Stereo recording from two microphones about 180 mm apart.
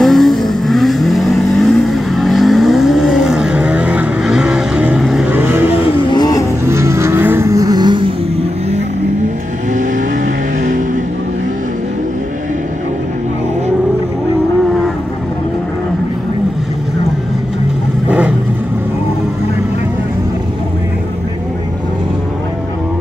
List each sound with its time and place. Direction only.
0.0 s vehicle: centre (ahead or behind)
5.7 s vehicle: 25° left (ahead or behind)
6.6 s vehicle: 15° right (ahead or behind)
9.8 s vehicle: 45° right (ahead or behind)